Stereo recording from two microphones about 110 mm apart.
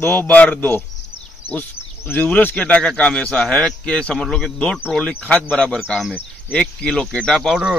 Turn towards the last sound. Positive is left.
turn(degrees=0)  # may be behind; listen again after turning